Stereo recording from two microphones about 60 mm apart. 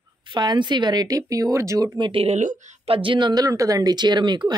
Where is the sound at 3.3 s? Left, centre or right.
Right.